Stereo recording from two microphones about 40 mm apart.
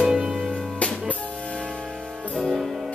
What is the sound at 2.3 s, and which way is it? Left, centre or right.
Music, centre.